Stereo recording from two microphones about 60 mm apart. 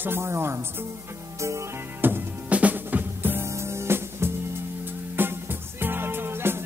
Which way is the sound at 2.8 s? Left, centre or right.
Right.